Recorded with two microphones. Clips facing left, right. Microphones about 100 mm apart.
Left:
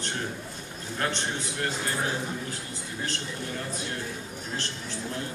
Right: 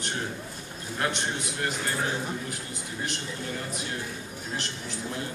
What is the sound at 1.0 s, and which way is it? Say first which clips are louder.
Speech: right 1 dB; 15° right (ahead or behind).